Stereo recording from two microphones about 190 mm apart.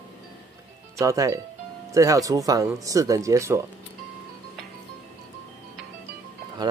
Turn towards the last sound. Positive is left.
turn(degrees=-20)  # may be behind; listen again after turning